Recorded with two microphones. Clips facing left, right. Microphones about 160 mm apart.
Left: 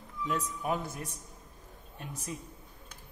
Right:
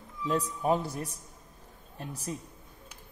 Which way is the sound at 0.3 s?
30° right (ahead or behind).